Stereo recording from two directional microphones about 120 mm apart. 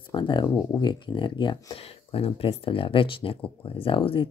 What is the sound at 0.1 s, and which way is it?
Speech, 40° left (ahead or behind).